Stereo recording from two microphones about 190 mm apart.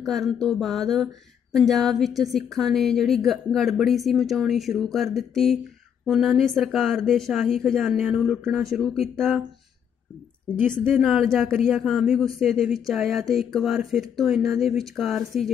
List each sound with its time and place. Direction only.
0.0 s a woman's voice: centre (ahead or behind)
10.7 s a woman's voice: centre (ahead or behind)